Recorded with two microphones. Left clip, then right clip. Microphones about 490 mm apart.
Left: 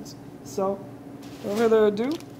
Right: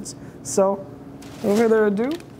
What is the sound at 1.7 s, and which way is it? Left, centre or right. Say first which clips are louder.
Speech: left 2 dB; right.